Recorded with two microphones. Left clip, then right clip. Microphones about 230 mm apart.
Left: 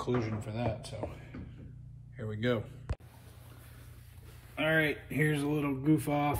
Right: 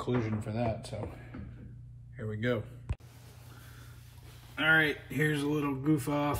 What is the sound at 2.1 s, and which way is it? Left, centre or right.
Speech, centre.